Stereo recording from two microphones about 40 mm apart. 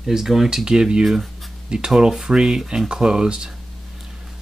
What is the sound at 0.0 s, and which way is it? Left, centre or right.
Speech, centre.